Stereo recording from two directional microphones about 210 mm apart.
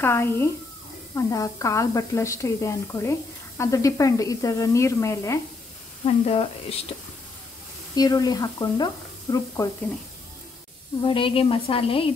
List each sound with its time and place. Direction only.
0.0 s a woman's voice: 10° left (ahead or behind)
6.0 s a woman's voice: 30° left (ahead or behind)
7.9 s a woman's voice: 20° left (ahead or behind)
11.0 s a woman's voice: 25° left (ahead or behind)